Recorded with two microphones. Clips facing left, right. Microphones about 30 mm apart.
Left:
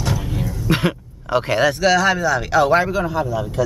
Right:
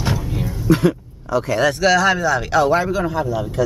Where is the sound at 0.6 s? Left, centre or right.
Left.